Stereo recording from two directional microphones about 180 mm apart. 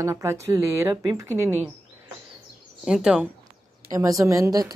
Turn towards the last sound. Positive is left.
turn(degrees=-20)  # may be behind; listen again after turning